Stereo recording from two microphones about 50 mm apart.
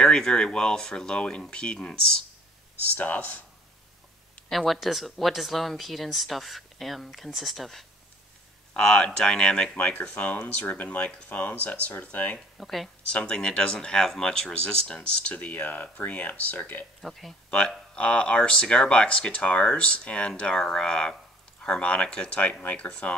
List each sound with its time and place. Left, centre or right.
0.0 s speech: centre
3.0 s speech: left
4.5 s speech: centre
8.7 s speech: centre
10.4 s speech: left
12.5 s speech: centre
13.1 s speech: centre; by 16.8 s left
17.0 s speech: centre
17.5 s speech: centre